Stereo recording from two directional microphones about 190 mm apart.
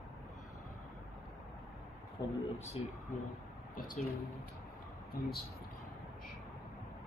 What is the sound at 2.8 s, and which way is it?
Speech, 30° left (ahead or behind).